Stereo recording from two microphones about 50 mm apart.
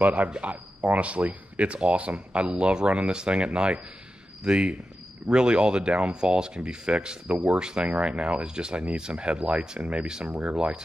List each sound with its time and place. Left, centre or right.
0.0 s speech: right
10.2 s speech: right